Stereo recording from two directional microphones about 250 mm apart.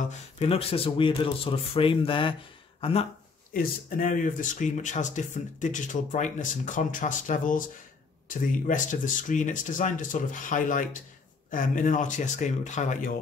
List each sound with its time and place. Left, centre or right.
0.4 s speech: left